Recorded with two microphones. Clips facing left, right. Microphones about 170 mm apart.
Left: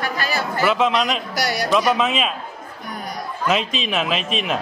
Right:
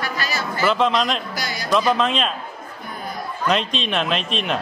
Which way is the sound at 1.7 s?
5° left (ahead or behind).